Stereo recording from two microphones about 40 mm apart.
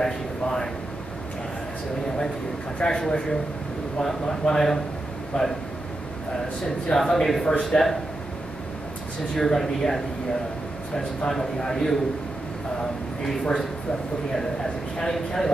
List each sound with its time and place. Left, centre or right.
0.0 s speech: centre
2.8 s a man's voice: centre
5.3 s speech: left
6.6 s a man's voice: centre
9.3 s a man's voice: centre
13.2 s a man's voice: centre